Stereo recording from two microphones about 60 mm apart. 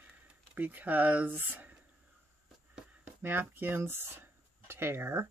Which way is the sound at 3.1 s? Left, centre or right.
Right.